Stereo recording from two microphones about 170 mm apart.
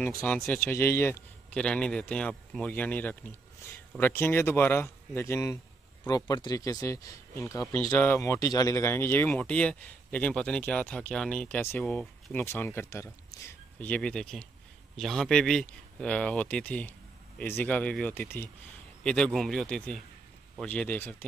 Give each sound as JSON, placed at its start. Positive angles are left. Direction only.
{"t": 0.2, "sound": "speech", "side_deg": 5}